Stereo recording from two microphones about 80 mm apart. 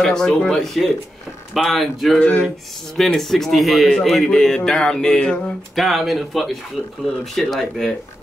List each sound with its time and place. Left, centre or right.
0.0 s a man's voice: centre
2.1 s speech: centre
3.0 s a man's voice: centre